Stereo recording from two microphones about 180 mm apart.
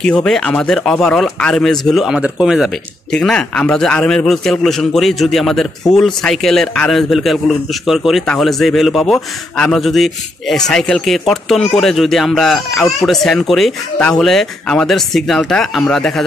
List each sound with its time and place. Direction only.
0.0 s a man's voice: 5° left (ahead or behind)